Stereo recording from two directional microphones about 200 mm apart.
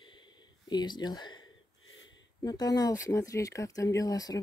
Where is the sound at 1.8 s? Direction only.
75° left (ahead or behind).